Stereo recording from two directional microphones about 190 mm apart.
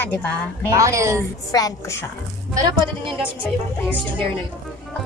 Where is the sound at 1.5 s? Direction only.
15° left (ahead or behind).